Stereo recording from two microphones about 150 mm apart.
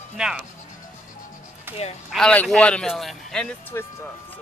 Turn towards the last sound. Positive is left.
turn(degrees=20)  # may be behind; listen again after turning